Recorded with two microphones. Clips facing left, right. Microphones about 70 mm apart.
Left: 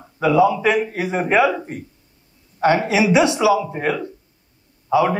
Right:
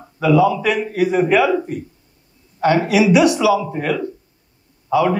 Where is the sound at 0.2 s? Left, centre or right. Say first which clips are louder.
Right 1 dB; left.